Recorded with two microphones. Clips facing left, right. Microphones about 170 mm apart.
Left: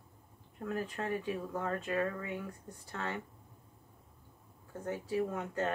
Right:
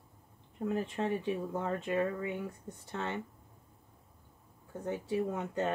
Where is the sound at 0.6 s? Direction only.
25° right (ahead or behind).